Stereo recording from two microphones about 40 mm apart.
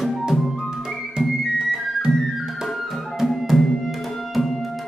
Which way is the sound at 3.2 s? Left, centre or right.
Centre.